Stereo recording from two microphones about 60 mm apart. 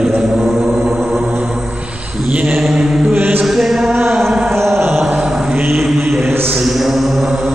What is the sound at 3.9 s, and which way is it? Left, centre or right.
Chant, right.